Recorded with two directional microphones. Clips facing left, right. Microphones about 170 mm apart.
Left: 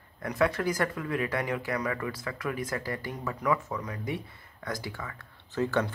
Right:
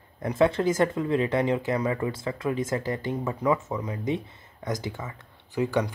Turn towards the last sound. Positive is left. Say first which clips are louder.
# right 2 dB
turn(degrees=-15)  # may be behind; listen again after turning